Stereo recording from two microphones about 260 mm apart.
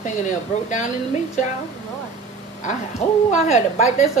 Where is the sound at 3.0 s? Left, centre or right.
Left.